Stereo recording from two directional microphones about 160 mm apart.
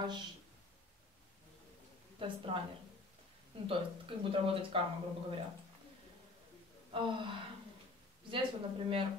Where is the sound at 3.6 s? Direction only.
35° right (ahead or behind).